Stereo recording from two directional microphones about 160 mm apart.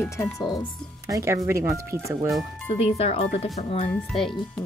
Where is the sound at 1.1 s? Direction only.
20° right (ahead or behind).